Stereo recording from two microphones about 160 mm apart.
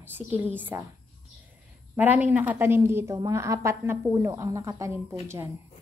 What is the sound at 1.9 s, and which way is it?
A woman's voice, 10° right (ahead or behind).